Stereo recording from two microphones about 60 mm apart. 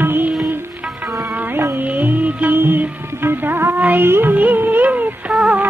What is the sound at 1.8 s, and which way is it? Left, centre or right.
Music, right.